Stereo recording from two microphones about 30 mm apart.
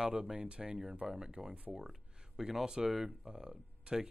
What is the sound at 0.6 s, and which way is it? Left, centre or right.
Speech, centre.